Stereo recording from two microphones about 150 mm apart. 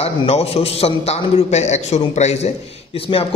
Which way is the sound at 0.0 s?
45° left (ahead or behind).